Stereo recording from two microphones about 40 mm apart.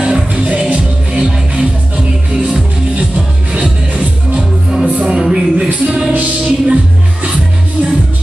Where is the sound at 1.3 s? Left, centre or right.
Centre.